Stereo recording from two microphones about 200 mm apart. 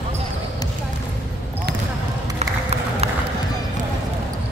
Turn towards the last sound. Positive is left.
turn(degrees=-30)  # may be behind; listen again after turning